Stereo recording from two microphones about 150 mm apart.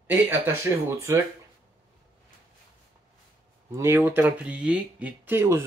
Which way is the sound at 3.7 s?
15° right (ahead or behind).